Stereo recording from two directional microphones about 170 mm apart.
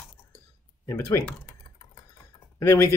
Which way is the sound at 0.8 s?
20° left (ahead or behind).